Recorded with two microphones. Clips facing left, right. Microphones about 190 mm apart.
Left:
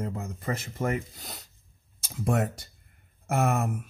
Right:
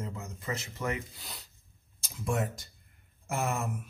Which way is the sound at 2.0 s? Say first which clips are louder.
Left 5 dB; 60° left (ahead or behind).